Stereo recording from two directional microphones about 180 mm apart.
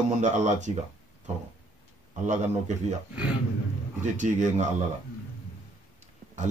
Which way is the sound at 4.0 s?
45° right (ahead or behind).